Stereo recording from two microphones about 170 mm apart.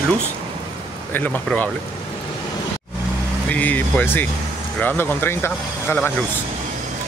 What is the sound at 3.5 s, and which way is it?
Speech, 10° left (ahead or behind).